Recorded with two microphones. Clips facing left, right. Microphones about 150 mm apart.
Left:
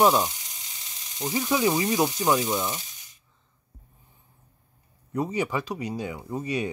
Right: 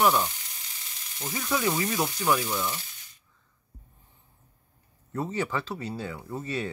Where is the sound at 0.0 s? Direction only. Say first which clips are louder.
Left 3 dB; 20° left (ahead or behind).